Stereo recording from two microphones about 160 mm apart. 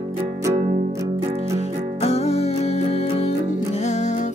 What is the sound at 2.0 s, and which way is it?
Music, 40° left (ahead or behind).